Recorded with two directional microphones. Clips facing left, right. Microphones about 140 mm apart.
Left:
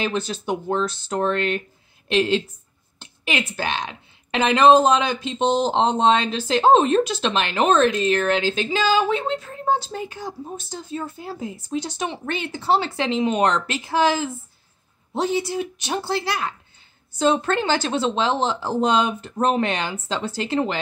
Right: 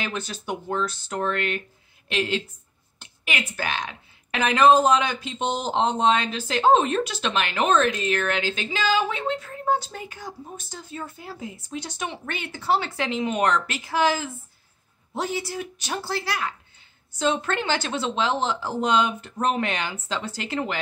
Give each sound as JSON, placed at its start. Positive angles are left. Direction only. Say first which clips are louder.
{"t": 0.0, "sound": "a woman's voice", "louder": "left 6 dB", "side_deg": 30}